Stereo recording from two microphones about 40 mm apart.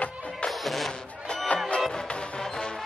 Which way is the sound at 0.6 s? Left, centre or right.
Centre.